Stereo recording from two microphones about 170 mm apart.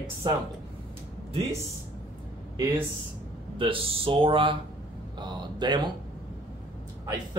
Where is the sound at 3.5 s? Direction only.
30° right (ahead or behind).